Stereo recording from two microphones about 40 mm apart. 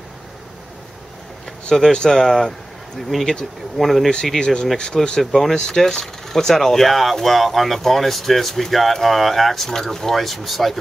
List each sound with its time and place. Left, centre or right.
1.7 s speech: centre
4.4 s speech: left
5.2 s speech: centre